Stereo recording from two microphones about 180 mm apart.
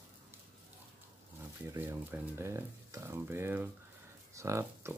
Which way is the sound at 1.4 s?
10° right (ahead or behind).